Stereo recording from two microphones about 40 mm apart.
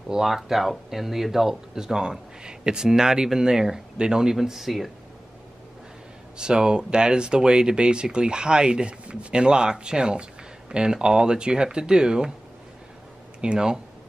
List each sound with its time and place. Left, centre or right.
0.1 s speech: centre
4.4 s speech: centre
6.3 s speech: right
13.4 s speech: right